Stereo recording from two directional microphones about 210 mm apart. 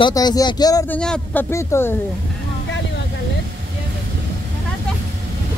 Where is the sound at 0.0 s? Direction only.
20° left (ahead or behind).